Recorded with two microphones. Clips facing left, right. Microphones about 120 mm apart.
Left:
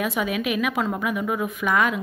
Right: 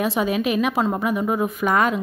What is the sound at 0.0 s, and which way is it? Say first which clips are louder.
A woman's voice: right 4 dB; 30° right (ahead or behind).